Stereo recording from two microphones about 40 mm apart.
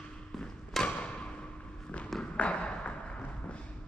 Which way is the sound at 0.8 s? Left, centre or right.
Left.